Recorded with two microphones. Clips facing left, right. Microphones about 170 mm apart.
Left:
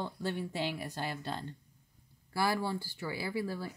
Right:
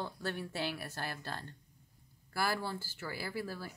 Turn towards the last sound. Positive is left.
turn(degrees=15)  # may be behind; listen again after turning